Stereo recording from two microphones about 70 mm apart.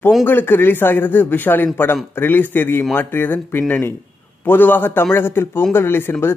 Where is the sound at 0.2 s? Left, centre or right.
Left.